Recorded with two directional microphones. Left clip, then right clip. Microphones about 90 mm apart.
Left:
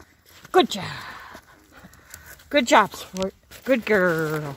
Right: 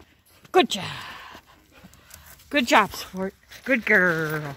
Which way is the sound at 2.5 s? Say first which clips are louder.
Left 2 dB; 5° left (ahead or behind).